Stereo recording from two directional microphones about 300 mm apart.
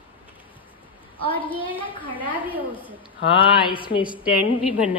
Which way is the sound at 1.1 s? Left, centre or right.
Centre.